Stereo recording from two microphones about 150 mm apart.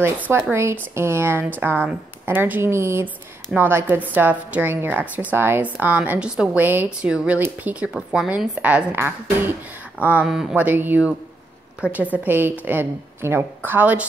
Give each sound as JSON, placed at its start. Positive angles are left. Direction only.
{"t": 0.3, "sound": "a woman's voice", "side_deg": -15}